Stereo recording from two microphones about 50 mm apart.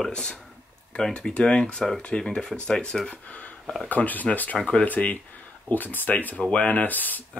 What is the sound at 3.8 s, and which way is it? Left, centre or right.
Speech, left.